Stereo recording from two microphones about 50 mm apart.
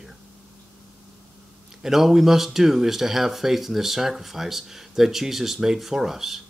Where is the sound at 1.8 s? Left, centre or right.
Centre.